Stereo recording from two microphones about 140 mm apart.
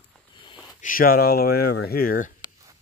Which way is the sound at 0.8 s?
80° left.